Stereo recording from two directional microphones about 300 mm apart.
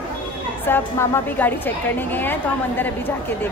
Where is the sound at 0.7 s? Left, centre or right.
Centre.